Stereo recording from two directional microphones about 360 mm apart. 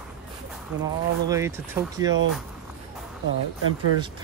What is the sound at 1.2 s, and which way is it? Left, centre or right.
Speech, centre.